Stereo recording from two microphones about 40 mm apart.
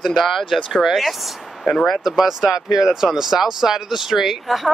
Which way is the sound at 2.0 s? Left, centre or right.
Centre.